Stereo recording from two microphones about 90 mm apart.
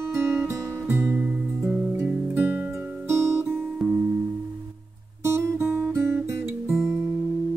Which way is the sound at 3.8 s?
5° left (ahead or behind).